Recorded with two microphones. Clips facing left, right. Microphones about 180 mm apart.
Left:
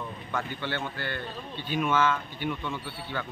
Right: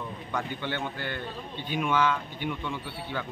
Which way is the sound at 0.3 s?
15° right (ahead or behind).